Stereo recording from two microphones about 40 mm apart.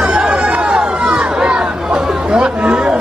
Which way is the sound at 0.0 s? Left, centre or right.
Right.